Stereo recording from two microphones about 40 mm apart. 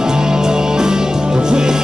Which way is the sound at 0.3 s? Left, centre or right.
Centre.